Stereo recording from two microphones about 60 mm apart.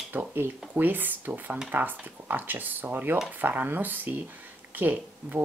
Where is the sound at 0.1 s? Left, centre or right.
Right.